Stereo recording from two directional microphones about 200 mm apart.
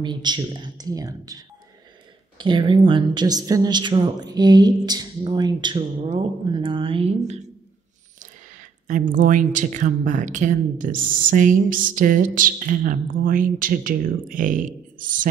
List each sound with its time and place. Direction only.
0.0 s a woman's voice: 20° right (ahead or behind)
8.8 s speech: 40° right (ahead or behind)